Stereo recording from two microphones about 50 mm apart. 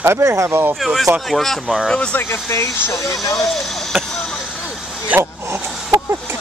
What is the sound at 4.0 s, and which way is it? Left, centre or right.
Vehicle, centre.